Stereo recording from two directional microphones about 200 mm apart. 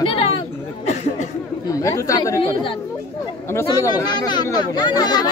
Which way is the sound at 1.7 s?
15° left (ahead or behind).